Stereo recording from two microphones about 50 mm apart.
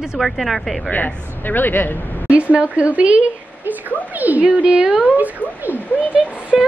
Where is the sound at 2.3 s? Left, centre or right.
Right.